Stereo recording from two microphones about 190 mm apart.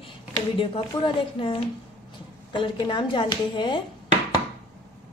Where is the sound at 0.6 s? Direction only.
25° left (ahead or behind).